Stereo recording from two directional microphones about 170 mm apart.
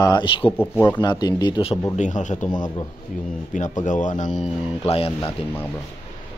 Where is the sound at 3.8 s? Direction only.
50° left (ahead or behind).